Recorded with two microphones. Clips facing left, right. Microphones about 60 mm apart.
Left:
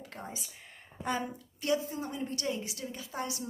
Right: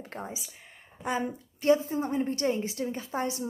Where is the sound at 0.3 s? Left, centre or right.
Centre.